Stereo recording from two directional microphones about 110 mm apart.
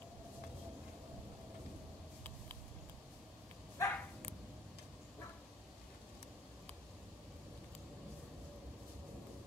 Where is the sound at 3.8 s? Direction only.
25° left (ahead or behind).